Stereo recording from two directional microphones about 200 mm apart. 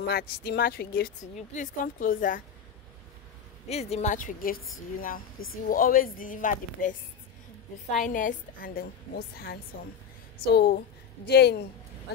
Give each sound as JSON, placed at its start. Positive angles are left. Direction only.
{"t": 0.0, "sound": "speech", "side_deg": 55}
{"t": 3.6, "sound": "a woman's voice", "side_deg": 30}
{"t": 5.7, "sound": "a woman's voice", "side_deg": 45}